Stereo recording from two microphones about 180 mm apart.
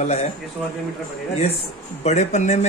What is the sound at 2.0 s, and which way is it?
Speech, 40° left (ahead or behind).